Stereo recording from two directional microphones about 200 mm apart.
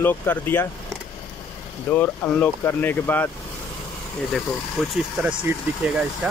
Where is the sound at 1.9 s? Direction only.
10° left (ahead or behind).